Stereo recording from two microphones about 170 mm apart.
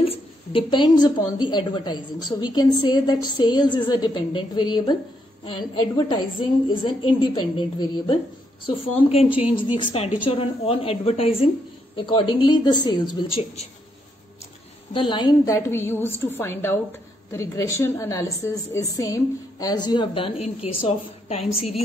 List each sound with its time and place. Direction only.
0.0 s a woman's voice: 35° left (ahead or behind)
14.9 s a woman's voice: 30° left (ahead or behind)